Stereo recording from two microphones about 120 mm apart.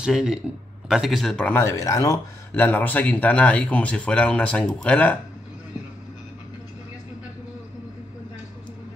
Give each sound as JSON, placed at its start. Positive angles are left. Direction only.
{"t": 0.0, "sound": "speech", "side_deg": -5}
{"t": 1.5, "sound": "speech", "side_deg": 25}
{"t": 2.5, "sound": "speech", "side_deg": 15}